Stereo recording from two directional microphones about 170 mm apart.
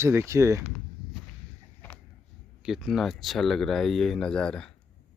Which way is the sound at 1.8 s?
10° left (ahead or behind).